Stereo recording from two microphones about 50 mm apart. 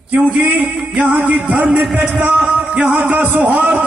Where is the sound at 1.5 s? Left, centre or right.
Right.